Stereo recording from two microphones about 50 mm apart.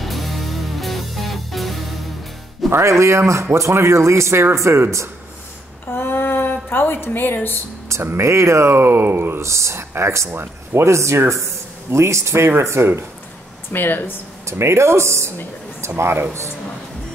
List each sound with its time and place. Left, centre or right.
0.0 s music: centre
2.7 s speech: right
5.9 s a sound: left
7.9 s speech: right
8.7 s speech: right
9.4 s speech: right
10.3 s speech: right
10.8 s speech: right
12.6 s speech: right
13.7 s speech: left
14.4 s speech: right